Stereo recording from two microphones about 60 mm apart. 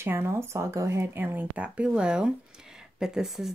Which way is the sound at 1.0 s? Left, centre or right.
Right.